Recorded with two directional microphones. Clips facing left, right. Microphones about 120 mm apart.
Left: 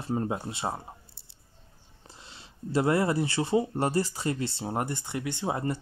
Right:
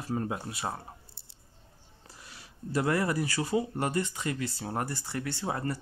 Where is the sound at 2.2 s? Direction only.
25° left (ahead or behind).